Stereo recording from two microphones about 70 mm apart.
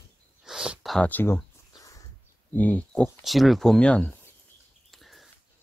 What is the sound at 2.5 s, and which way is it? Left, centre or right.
Speech, left.